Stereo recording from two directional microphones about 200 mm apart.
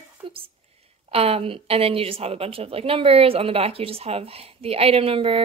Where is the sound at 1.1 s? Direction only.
30° right (ahead or behind).